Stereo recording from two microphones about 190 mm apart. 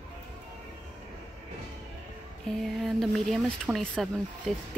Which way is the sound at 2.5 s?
Centre (ahead or behind).